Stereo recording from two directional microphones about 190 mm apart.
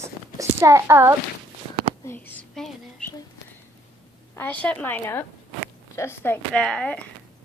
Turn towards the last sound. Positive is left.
turn(degrees=5)  # may be behind; listen again after turning